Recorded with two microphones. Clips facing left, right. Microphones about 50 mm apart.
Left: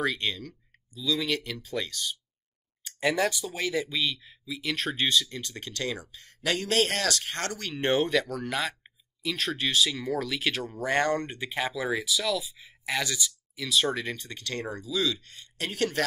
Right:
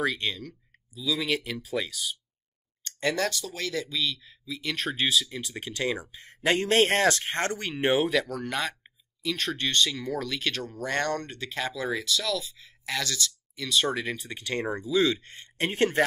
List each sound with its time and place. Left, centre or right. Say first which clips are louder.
0.0 s speech: right 1 dB; centre
2.8 s speech: left 1 dB; centre
13.6 s speech: even; centre; by 16.0 s right